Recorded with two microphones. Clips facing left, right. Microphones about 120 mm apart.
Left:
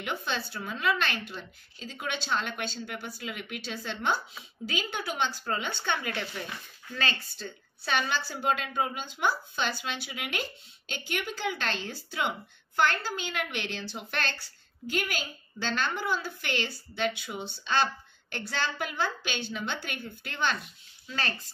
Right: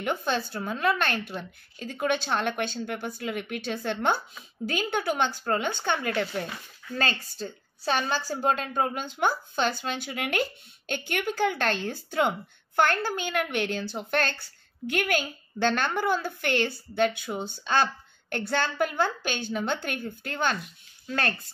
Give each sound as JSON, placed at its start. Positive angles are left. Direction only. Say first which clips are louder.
{"t": 0.0, "sound": "a woman's voice", "louder": "right 5 dB", "side_deg": -45}